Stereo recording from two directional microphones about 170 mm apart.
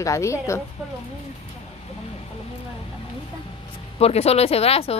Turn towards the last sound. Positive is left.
turn(degrees=35)  # may be behind; listen again after turning